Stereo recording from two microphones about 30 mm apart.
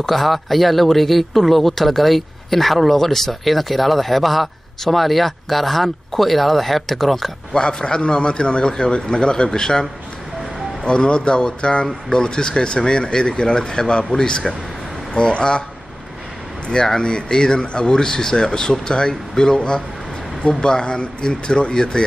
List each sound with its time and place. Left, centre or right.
0.1 s speech: centre
7.5 s speech: left
16.8 s speech: left